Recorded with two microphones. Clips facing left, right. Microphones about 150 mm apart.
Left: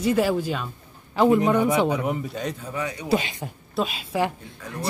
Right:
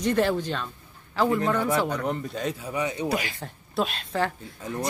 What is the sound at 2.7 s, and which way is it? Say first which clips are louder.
Speech: right 2 dB; 20° right (ahead or behind).